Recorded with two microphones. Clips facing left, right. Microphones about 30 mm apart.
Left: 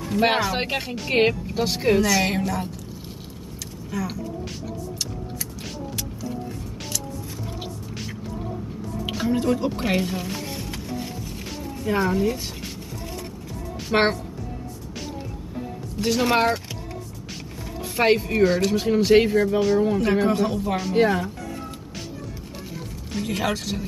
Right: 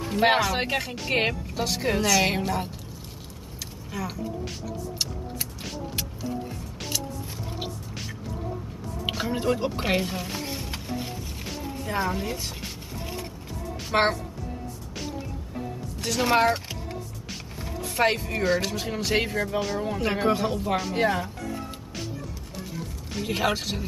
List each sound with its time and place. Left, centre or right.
0.1 s speech: centre
2.3 s speech: centre
3.9 s speech: centre
9.1 s speech: centre
11.4 s music: centre
12.2 s speech: centre
13.9 s speech: centre
16.0 s speech: centre
17.9 s speech: centre
23.3 s speech: centre